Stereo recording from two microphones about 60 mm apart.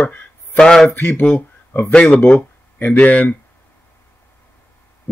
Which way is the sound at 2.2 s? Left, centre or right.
Left.